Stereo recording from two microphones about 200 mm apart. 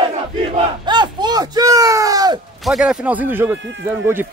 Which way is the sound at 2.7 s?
5° right (ahead or behind).